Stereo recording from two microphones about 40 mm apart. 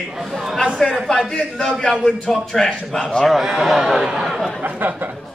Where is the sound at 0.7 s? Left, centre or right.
Centre.